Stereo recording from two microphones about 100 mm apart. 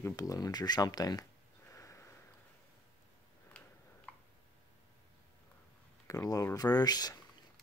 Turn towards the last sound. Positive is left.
turn(degrees=40)  # may be behind; listen again after turning